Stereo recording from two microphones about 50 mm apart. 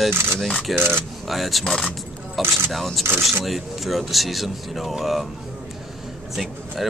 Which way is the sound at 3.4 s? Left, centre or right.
Centre.